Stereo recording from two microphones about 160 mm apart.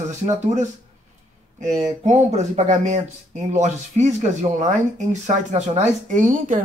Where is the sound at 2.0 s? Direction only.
45° right (ahead or behind).